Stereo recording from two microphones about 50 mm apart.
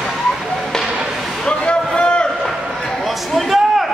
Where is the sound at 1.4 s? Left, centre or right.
Centre.